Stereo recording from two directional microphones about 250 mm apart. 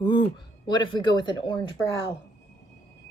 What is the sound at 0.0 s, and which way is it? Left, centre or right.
Speech, centre.